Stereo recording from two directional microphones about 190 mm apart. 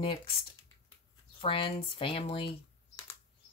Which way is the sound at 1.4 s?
30° left (ahead or behind).